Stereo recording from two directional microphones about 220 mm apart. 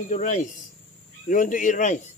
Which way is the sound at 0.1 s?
35° left (ahead or behind).